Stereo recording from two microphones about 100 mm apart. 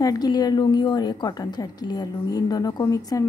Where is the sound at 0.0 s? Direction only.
40° left (ahead or behind).